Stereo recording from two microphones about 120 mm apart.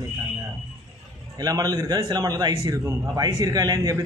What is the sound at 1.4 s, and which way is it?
A man's voice, 30° right (ahead or behind).